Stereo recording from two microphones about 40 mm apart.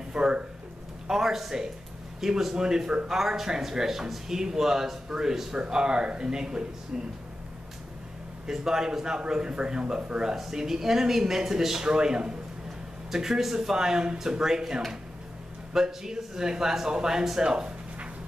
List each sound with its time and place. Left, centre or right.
0.1 s a sound: right
1.0 s a man's voice: centre
8.5 s speech: centre
10.3 s speech: centre